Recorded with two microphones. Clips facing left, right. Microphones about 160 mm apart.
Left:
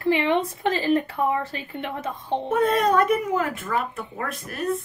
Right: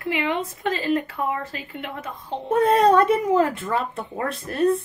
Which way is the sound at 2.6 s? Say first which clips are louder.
Right 4 dB; 30° right (ahead or behind).